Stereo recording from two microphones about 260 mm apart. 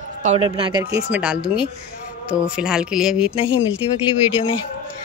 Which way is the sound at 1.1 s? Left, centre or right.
Centre.